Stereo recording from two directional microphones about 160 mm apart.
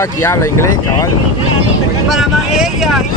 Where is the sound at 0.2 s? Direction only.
15° left (ahead or behind).